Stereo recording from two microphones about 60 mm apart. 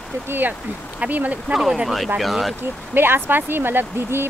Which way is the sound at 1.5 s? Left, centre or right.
Centre.